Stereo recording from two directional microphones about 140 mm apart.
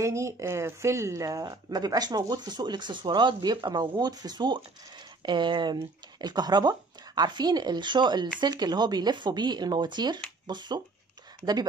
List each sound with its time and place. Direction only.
0.0 s speech: 20° right (ahead or behind)